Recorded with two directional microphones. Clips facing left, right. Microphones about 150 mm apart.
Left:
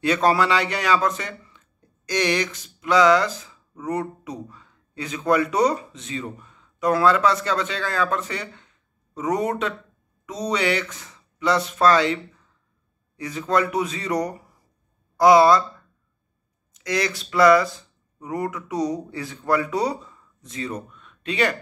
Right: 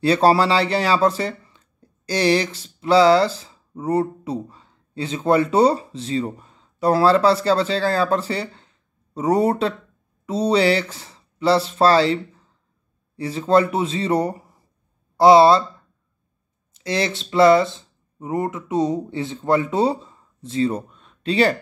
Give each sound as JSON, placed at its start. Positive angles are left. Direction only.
{"t": 0.0, "sound": "speech", "side_deg": -30}
{"t": 16.7, "sound": "speech", "side_deg": -30}